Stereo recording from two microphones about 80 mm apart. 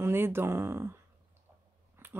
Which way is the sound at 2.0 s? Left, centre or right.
Right.